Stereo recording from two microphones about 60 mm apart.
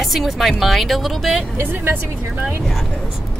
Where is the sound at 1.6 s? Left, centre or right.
Right.